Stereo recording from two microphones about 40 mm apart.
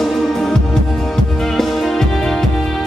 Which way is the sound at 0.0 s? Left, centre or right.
Centre.